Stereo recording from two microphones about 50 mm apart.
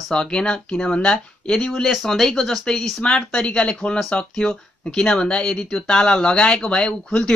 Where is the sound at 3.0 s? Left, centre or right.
Left.